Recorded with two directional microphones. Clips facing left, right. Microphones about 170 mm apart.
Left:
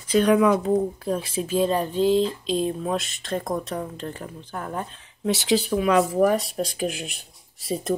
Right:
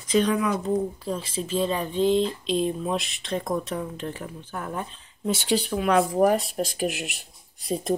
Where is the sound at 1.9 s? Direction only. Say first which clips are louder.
Left 2 dB; centre (ahead or behind).